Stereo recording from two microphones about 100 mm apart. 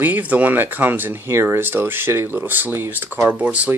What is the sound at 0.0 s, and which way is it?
Speech, 15° right (ahead or behind).